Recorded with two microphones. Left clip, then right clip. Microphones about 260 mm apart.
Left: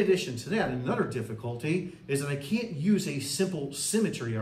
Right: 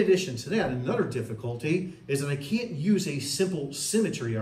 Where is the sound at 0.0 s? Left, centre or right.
Centre.